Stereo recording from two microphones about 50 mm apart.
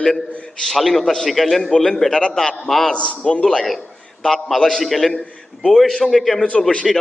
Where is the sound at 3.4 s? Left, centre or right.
Centre.